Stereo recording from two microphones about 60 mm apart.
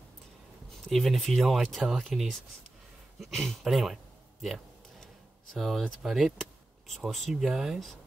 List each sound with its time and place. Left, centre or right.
0.8 s a man's voice: centre